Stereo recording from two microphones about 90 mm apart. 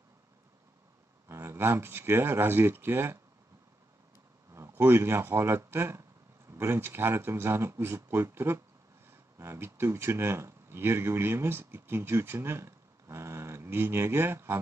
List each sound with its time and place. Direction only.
1.3 s speech: 25° right (ahead or behind)
4.5 s speech: 30° right (ahead or behind)